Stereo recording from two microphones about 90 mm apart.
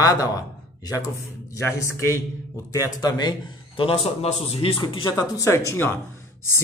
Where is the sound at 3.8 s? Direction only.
90° left; by 5.1 s 65° left (ahead or behind).